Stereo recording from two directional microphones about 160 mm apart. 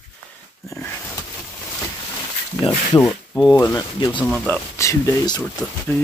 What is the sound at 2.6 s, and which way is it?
Speech, 20° left (ahead or behind).